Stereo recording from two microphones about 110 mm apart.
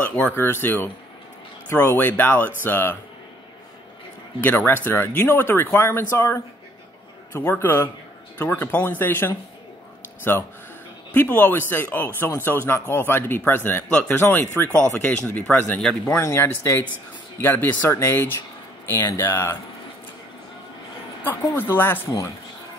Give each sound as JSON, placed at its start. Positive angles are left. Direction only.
{"t": 0.0, "sound": "speech", "side_deg": 15}
{"t": 4.4, "sound": "speech", "side_deg": 15}
{"t": 15.8, "sound": "speech", "side_deg": 5}
{"t": 16.2, "sound": "speech", "side_deg": 25}
{"t": 21.2, "sound": "speech", "side_deg": 20}